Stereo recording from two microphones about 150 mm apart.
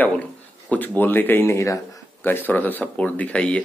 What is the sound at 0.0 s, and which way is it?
Speech, 10° left (ahead or behind).